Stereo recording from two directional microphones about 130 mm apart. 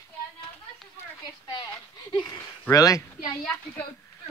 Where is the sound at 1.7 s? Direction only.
30° left (ahead or behind).